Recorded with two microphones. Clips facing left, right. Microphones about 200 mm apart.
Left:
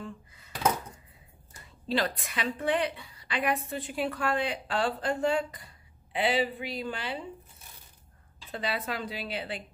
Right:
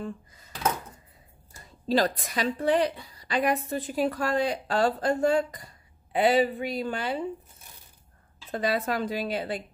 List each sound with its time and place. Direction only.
0.0 s dishes: 40° right (ahead or behind)
1.9 s a woman's voice: 40° right (ahead or behind)
8.5 s a woman's voice: 45° right (ahead or behind)